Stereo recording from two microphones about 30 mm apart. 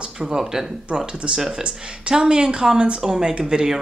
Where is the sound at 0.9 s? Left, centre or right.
Right.